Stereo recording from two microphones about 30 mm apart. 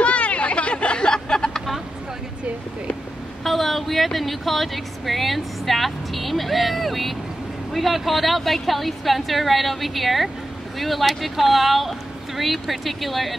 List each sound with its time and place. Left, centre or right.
0.0 s chatter: left
1.1 s a sound: centre
3.4 s a woman's voice: centre